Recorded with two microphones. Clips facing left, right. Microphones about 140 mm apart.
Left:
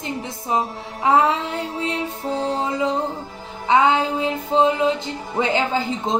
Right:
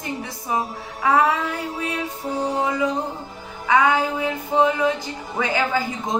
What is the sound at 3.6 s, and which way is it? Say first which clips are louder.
Music: left 1 dB; 25° left (ahead or behind).